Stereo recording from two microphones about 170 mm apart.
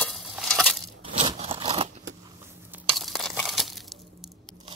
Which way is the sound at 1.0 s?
30° right (ahead or behind).